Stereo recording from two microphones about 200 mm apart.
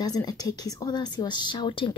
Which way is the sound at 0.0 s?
20° left (ahead or behind).